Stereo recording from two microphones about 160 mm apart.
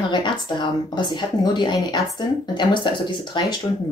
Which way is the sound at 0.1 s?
30° left (ahead or behind).